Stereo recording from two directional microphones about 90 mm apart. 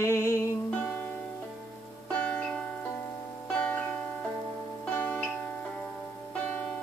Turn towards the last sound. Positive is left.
turn(degrees=20)  # may be behind; listen again after turning